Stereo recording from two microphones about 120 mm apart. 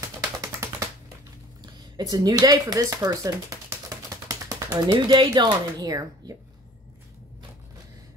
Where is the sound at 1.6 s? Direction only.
35° right (ahead or behind).